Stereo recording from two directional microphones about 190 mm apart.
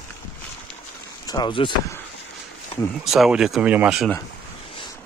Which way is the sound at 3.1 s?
Centre (ahead or behind).